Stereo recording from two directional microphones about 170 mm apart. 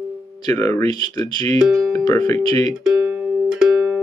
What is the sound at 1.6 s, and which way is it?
Speech, centre (ahead or behind).